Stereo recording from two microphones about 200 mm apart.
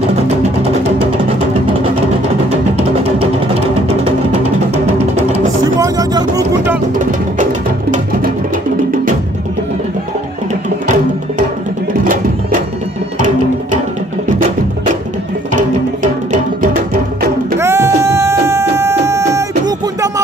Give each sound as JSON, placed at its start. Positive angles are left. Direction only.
{"t": 5.8, "sound": "vehicle", "side_deg": -20}
{"t": 7.0, "sound": "music", "side_deg": -40}
{"t": 15.5, "sound": "music", "side_deg": -40}
{"t": 17.6, "sound": "music", "side_deg": -15}